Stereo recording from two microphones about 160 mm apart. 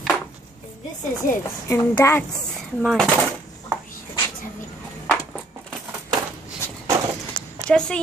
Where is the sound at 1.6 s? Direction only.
15° left (ahead or behind).